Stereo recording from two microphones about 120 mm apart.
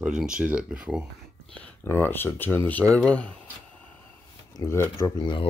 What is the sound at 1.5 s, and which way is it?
Speech, 10° left (ahead or behind).